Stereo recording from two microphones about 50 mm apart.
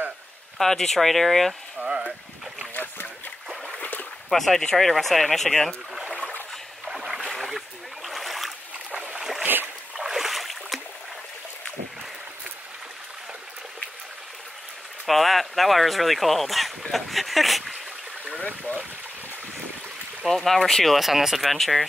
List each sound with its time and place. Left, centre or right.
0.6 s speech: centre
1.8 s speech: right
2.7 s boat: left
4.3 s speech: centre
6.9 s boat: centre
7.3 s a sound: centre
8.9 s boat: right
9.9 s a sound: centre
15.0 s speech: centre
20.2 s speech: centre